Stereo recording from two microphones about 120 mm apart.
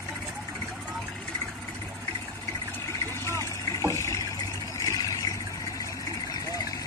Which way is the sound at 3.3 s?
25° left (ahead or behind).